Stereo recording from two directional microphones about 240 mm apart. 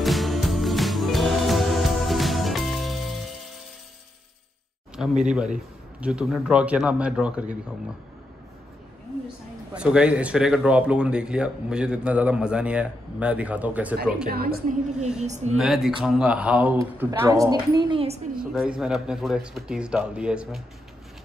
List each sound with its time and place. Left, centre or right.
0.0 s music: centre
5.2 s speech: centre
9.8 s speech: centre
14.3 s a woman's voice: right
15.5 s speech: centre; by 18.2 s right
18.3 s speech: centre